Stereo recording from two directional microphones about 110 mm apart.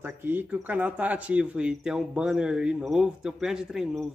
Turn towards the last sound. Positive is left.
turn(degrees=-5)  # may be behind; listen again after turning